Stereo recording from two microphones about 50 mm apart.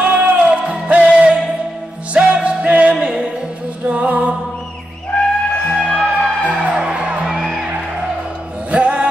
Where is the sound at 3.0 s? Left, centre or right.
Centre.